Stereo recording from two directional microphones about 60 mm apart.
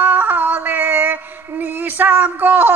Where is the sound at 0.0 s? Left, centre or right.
Right.